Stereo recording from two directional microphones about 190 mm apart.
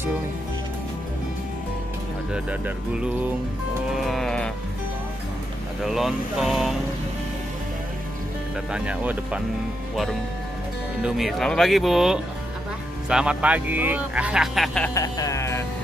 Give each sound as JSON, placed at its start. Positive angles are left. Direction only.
{"t": 2.3, "sound": "speech", "side_deg": -5}
{"t": 3.9, "sound": "music", "side_deg": 0}
{"t": 5.9, "sound": "speech", "side_deg": 0}
{"t": 8.7, "sound": "speech", "side_deg": -5}
{"t": 11.0, "sound": "speech", "side_deg": -5}
{"t": 15.0, "sound": "music", "side_deg": 15}